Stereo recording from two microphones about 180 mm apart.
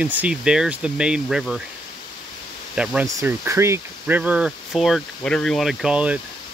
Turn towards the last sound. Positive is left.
turn(degrees=-5)  # may be behind; listen again after turning